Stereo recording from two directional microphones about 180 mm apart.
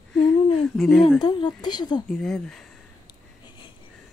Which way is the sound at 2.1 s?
5° left (ahead or behind).